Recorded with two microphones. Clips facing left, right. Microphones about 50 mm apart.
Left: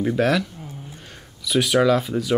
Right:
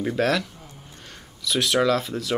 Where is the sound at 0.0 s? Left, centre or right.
Centre.